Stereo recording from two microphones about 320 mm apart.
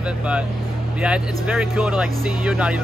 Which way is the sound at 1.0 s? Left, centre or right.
Centre.